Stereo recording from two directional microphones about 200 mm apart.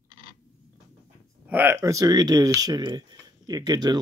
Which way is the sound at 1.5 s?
10° right (ahead or behind).